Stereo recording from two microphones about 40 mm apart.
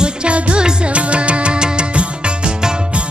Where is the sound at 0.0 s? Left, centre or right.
Right.